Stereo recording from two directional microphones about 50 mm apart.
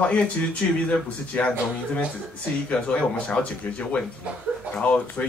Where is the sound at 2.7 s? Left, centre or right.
Left.